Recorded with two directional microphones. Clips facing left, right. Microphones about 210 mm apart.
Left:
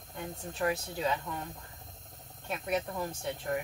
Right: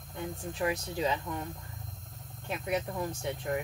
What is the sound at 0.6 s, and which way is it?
Speech, 15° right (ahead or behind).